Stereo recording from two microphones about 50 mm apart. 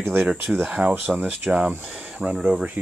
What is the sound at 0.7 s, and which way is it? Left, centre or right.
Speech, centre.